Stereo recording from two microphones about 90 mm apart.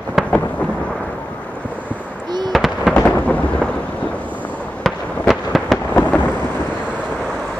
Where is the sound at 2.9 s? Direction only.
15° left (ahead or behind).